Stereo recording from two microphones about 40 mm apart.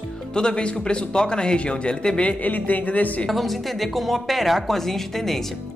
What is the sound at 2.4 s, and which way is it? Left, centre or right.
Speech, left.